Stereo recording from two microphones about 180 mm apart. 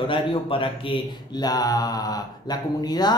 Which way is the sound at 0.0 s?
30° left (ahead or behind).